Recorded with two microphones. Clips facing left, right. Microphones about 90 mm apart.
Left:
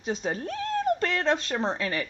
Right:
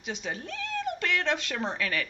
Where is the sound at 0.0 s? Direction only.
40° left (ahead or behind).